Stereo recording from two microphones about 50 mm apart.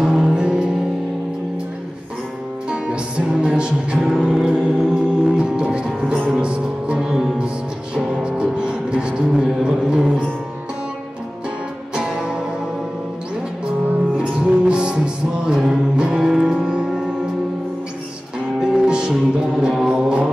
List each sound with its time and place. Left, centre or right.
0.1 s music: centre
2.7 s music: right
4.0 s music: centre
11.9 s music: centre
14.4 s music: centre
18.6 s music: centre